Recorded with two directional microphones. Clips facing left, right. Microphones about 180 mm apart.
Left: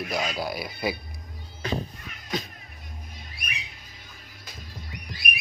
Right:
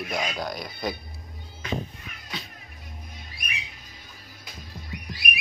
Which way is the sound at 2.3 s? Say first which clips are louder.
Left 8 dB; 45° left (ahead or behind).